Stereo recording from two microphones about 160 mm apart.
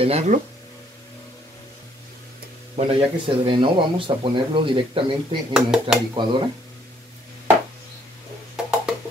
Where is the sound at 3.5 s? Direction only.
30° right (ahead or behind).